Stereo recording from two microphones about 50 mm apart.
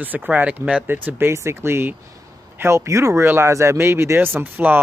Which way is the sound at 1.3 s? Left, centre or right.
Right.